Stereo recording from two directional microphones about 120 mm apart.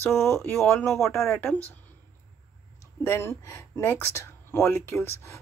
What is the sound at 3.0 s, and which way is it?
Speech, 20° left (ahead or behind).